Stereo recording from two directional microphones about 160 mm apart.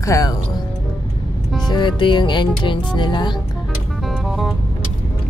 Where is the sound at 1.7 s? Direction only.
30° left (ahead or behind).